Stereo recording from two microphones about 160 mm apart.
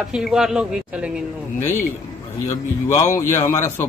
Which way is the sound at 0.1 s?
5° right (ahead or behind).